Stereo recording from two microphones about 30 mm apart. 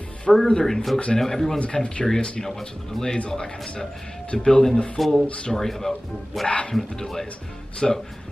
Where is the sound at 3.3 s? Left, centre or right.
Left.